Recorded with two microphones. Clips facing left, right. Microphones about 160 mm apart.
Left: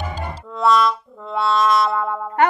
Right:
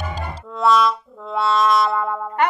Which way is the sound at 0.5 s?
Centre (ahead or behind).